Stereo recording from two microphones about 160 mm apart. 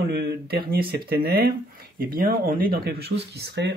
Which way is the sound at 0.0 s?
85° right.